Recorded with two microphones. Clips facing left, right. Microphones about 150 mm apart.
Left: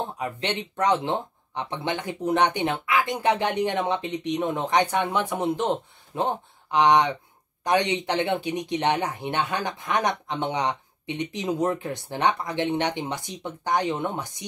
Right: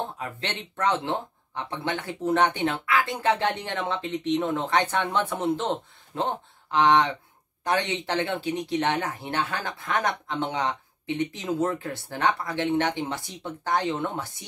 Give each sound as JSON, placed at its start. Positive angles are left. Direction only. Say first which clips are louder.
{"t": 0.2, "sound": "speech", "louder": "left 5 dB", "side_deg": 15}